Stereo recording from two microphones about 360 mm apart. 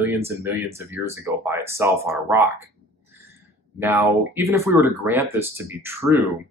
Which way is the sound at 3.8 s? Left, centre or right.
Centre.